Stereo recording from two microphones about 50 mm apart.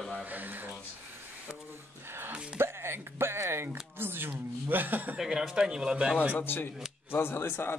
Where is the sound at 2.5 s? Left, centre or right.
Right.